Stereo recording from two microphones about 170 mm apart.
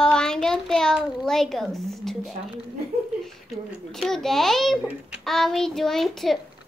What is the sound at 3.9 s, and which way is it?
A child's voice, centre (ahead or behind).